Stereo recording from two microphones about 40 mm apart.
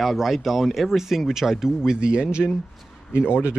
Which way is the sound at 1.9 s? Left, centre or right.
Right.